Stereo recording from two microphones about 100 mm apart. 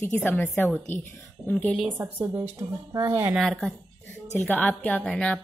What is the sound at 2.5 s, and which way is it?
Speech, 40° right (ahead or behind).